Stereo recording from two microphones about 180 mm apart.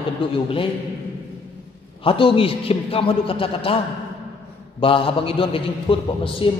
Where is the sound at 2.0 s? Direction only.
30° left (ahead or behind).